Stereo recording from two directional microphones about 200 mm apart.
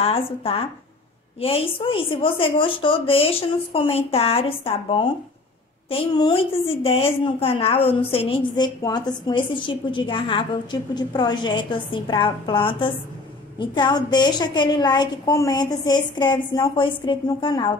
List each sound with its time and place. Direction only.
0.0 s a woman's voice: 30° left (ahead or behind)